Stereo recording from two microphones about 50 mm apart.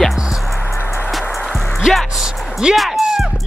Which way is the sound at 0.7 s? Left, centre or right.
Left.